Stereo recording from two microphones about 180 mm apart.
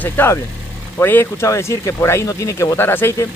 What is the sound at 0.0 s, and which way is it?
Speech, 10° left (ahead or behind).